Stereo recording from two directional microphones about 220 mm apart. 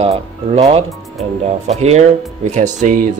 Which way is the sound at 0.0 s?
25° right (ahead or behind).